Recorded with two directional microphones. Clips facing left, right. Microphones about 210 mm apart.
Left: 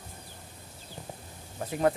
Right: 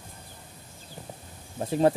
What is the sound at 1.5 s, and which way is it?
Speech, 30° right (ahead or behind).